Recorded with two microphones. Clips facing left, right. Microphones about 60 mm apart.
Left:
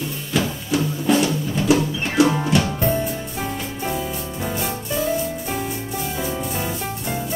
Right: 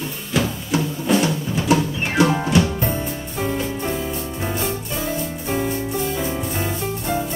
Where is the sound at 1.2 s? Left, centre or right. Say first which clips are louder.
Left 1 dB; right.